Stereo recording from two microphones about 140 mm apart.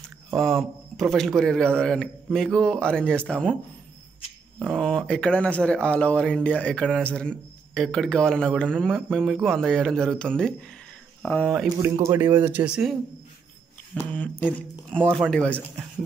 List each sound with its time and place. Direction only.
0.3 s speech: centre (ahead or behind)
4.7 s speech: 5° left (ahead or behind)
11.8 s speech: 20° right (ahead or behind)
13.9 s speech: 5° left (ahead or behind)